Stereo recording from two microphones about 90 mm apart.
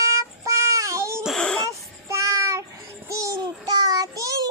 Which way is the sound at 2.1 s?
35° right (ahead or behind).